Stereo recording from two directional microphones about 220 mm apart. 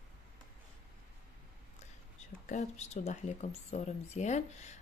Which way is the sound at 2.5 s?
30° left (ahead or behind).